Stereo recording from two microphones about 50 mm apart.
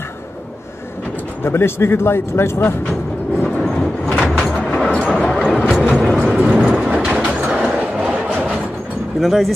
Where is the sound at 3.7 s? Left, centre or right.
Centre.